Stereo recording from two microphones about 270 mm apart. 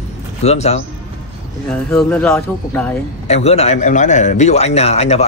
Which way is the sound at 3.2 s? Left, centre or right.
Left.